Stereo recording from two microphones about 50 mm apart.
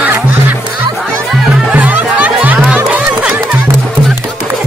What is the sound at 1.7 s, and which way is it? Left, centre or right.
Music, right.